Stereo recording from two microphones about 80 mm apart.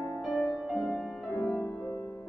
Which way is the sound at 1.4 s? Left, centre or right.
Left.